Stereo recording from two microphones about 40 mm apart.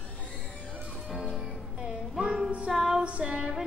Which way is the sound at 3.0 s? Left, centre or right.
Right.